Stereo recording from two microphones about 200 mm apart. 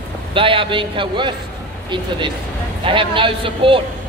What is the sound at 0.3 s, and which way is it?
A man's voice, 25° right (ahead or behind).